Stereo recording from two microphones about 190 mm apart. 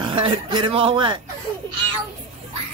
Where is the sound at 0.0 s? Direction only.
25° right (ahead or behind).